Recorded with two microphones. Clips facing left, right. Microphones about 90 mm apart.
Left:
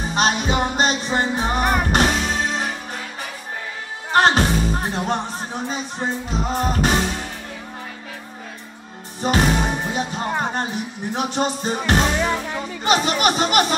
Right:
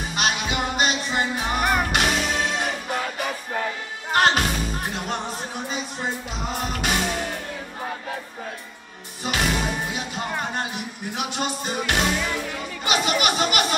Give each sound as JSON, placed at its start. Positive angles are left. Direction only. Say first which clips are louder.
{"t": 0.0, "sound": "music", "louder": "left 5 dB", "side_deg": 35}
{"t": 4.1, "sound": "music", "louder": "left 4 dB", "side_deg": 30}
{"t": 6.3, "sound": "music", "louder": "left 6 dB", "side_deg": 35}
{"t": 9.2, "sound": "music", "louder": "left 6 dB", "side_deg": 40}
{"t": 12.8, "sound": "speech", "louder": "left 4 dB", "side_deg": 40}